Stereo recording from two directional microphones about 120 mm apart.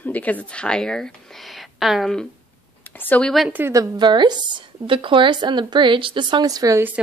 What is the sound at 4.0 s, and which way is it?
Speech, 40° right (ahead or behind).